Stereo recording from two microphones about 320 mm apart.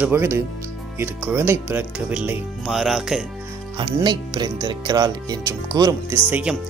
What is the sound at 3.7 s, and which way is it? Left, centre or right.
Speech, centre.